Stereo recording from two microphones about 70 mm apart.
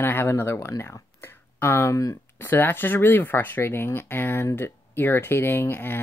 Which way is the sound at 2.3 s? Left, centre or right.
Left.